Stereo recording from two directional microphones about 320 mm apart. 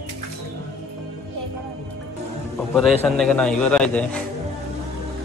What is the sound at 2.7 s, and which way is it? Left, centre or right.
A man's voice, centre.